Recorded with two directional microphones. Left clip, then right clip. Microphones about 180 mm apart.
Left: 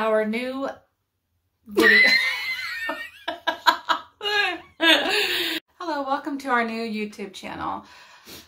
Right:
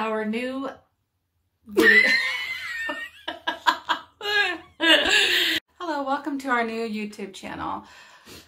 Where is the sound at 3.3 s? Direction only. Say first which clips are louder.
Left 3 dB; 20° left (ahead or behind).